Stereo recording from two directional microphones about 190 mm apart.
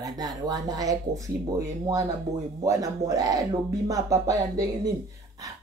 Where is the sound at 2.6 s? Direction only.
15° right (ahead or behind).